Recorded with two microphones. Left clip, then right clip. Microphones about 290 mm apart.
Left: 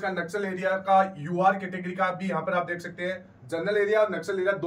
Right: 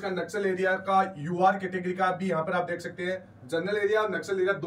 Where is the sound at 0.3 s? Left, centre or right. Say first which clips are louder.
Right 5 dB; centre.